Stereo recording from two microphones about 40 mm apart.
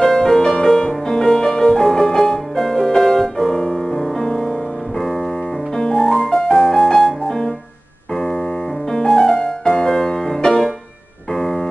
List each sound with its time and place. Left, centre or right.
0.0 s music: centre
4.2 s music: centre
5.8 s music: centre
6.8 s piano: centre
8.9 s music: centre
11.3 s keyboard: centre